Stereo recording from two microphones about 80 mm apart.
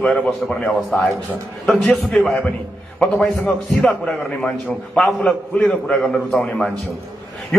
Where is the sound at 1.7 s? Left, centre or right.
Centre.